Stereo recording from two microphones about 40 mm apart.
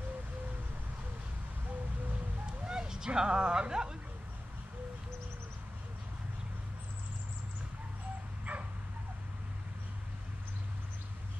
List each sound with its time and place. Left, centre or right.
2.6 s a sound: centre
3.2 s speech: right
8.5 s bow-wow: right